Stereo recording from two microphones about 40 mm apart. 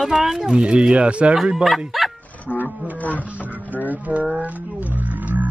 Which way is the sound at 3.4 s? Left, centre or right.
Right.